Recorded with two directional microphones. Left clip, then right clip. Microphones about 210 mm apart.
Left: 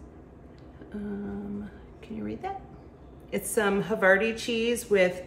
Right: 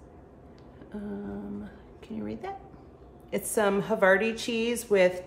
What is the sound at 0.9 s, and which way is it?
A woman's voice, 10° right (ahead or behind).